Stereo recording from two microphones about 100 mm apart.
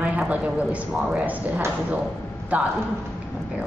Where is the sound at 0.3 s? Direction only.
15° right (ahead or behind).